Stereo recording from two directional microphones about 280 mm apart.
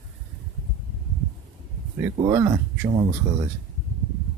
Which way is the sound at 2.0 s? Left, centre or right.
Centre.